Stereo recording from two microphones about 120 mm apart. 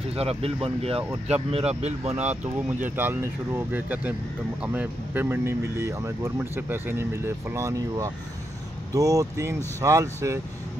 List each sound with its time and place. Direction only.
0.1 s speech: 55° right (ahead or behind)
2.8 s speech: 15° right (ahead or behind)